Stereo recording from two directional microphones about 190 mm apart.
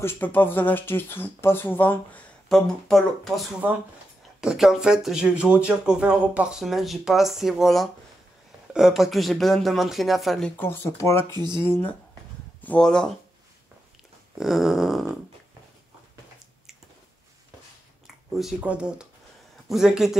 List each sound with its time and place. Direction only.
0.0 s speech: 10° left (ahead or behind)
11.2 s speech: 25° right (ahead or behind)
11.6 s speech: 10° left (ahead or behind)
14.4 s speech: centre (ahead or behind)
18.0 s speech: centre (ahead or behind)